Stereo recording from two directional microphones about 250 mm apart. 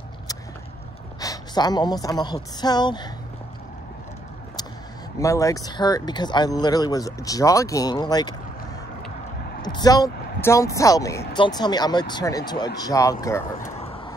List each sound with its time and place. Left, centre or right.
1.2 s a woman's voice: centre
5.2 s speech: centre
9.6 s speech: centre
13.6 s vehicle: left